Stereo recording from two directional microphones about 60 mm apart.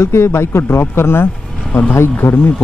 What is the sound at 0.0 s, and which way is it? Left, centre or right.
Speech, left.